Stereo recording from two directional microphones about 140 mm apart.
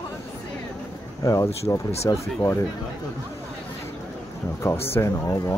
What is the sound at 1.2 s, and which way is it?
Speech, 20° left (ahead or behind).